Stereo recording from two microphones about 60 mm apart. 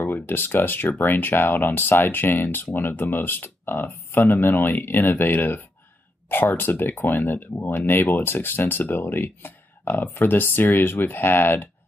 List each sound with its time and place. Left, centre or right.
0.0 s speech: left